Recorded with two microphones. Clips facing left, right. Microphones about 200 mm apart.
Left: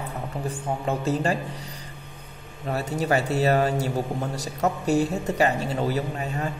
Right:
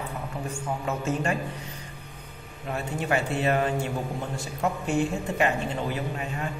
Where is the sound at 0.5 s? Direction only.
35° left (ahead or behind).